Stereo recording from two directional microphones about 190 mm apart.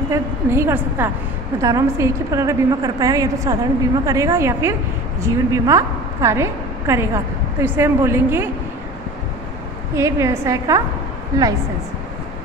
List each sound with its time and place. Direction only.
0.1 s a woman's voice: 15° right (ahead or behind)
9.9 s a woman's voice: 15° right (ahead or behind)